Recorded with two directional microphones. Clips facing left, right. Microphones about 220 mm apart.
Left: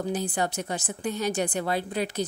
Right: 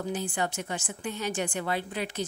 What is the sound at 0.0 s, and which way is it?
Speech, 35° left (ahead or behind).